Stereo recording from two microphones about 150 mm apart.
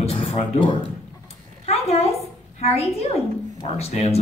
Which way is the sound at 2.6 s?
45° left (ahead or behind).